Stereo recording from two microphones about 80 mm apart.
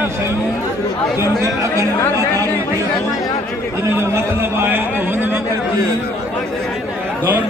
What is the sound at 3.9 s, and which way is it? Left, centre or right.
A man's voice, right.